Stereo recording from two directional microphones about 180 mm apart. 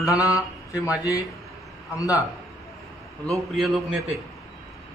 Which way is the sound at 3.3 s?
Centre (ahead or behind).